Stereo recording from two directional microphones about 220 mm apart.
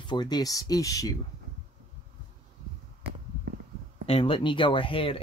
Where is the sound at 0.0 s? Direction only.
20° left (ahead or behind).